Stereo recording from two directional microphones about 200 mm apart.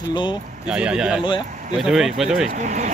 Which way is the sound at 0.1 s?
20° left (ahead or behind).